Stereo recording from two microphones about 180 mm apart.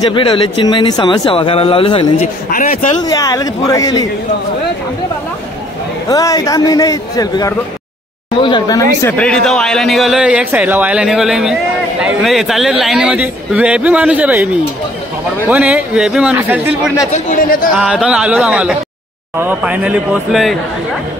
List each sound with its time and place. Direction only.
0.1 s speech: 25° left (ahead or behind)
2.5 s speech: 50° left (ahead or behind)
3.0 s speech: 20° left (ahead or behind)
6.0 s speech: 20° left (ahead or behind)
9.1 s a man's voice: 5° left (ahead or behind)
17.1 s speech: 45° left (ahead or behind)
17.7 s a man's voice: 5° right (ahead or behind)